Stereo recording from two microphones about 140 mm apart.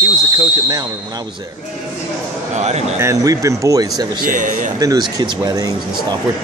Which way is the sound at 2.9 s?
20° right (ahead or behind).